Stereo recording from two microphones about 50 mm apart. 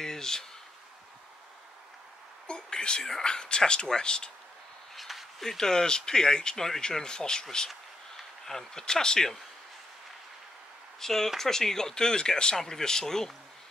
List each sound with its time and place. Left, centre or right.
0.0 s a sound: centre
2.4 s a sound: centre
3.0 s speech: centre
4.9 s speech: centre
8.5 s speech: centre
11.0 s speech: centre